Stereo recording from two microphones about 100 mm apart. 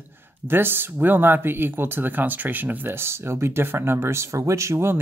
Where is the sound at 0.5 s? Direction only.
20° right (ahead or behind).